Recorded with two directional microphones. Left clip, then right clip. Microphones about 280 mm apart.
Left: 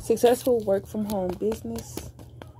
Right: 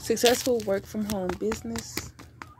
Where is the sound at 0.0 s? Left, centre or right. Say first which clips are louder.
Left 2 dB; centre.